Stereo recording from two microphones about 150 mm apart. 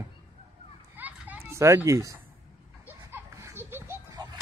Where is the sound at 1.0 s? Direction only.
15° right (ahead or behind).